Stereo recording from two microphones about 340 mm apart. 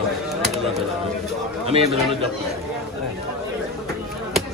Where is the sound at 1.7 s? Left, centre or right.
Centre.